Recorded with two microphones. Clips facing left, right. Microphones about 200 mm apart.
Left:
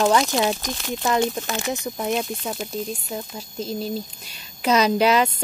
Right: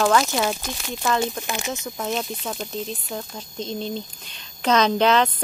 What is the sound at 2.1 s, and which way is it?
A woman's voice, 5° left (ahead or behind).